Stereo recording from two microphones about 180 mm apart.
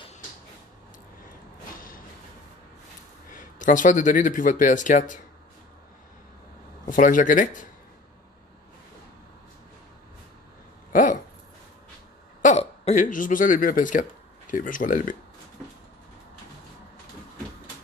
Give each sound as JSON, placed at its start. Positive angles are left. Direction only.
{"t": 3.3, "sound": "speech", "side_deg": 45}
{"t": 6.9, "sound": "speech", "side_deg": 45}
{"t": 10.9, "sound": "a sound", "side_deg": 45}
{"t": 12.4, "sound": "speech", "side_deg": 40}